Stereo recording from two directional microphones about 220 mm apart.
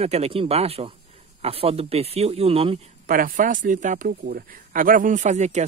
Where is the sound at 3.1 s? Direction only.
40° right (ahead or behind).